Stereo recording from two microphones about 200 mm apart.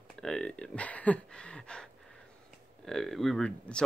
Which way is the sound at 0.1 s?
5° left (ahead or behind).